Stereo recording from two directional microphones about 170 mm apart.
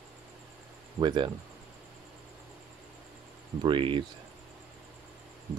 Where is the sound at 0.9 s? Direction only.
25° right (ahead or behind).